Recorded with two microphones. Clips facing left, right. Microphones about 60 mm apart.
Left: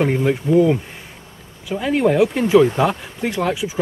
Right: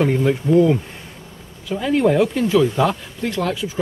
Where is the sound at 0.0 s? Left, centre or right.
Centre.